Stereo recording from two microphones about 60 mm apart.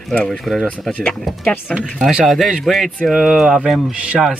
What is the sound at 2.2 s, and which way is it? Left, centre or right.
Speech, centre.